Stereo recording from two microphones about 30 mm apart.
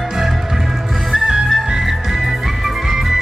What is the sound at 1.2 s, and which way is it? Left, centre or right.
Music, right.